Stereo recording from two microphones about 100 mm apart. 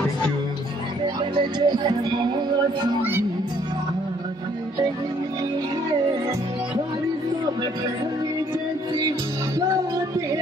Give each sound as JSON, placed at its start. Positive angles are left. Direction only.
{"t": 1.3, "sound": "music", "side_deg": -45}
{"t": 3.0, "sound": "music", "side_deg": -20}